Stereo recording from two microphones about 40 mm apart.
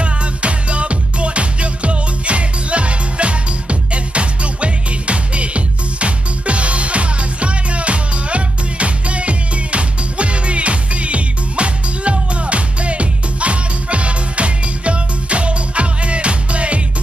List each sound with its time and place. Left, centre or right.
0.0 s music: right